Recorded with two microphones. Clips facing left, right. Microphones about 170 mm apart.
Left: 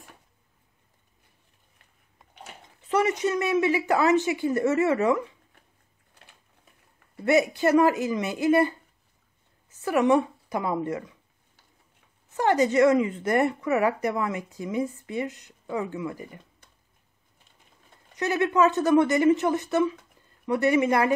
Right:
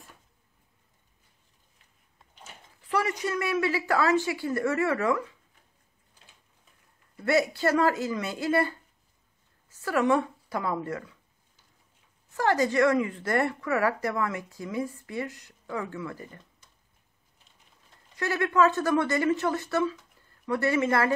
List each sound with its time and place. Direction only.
2.8 s a woman's voice: 20° left (ahead or behind)
7.2 s a woman's voice: 20° left (ahead or behind)
12.3 s a woman's voice: 20° left (ahead or behind)
18.1 s a woman's voice: 20° left (ahead or behind)